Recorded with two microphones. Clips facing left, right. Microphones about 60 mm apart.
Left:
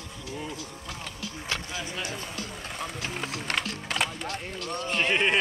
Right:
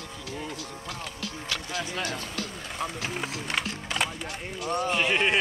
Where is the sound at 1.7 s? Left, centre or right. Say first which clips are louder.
Right 3 dB; right.